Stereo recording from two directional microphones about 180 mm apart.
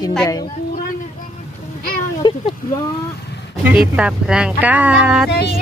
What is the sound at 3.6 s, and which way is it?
Speech, 5° right (ahead or behind).